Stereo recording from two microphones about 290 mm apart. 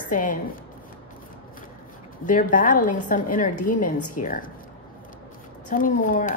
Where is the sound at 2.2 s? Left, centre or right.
Left.